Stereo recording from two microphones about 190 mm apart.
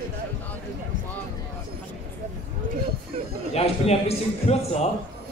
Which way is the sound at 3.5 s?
35° left (ahead or behind).